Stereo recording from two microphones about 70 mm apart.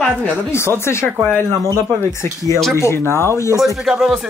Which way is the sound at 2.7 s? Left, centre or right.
Left.